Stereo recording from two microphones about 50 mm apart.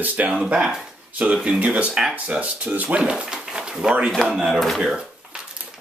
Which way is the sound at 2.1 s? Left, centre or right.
Right.